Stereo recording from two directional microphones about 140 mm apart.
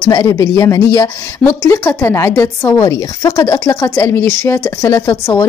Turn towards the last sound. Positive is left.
turn(degrees=20)  # may be behind; listen again after turning